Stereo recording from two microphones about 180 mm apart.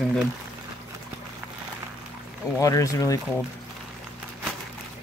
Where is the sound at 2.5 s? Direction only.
20° left (ahead or behind).